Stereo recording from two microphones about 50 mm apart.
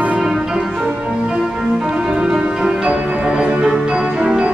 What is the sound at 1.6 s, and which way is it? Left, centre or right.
Music, centre.